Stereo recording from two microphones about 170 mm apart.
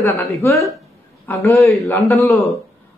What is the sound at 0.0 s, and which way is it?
A woman's voice, 15° left (ahead or behind).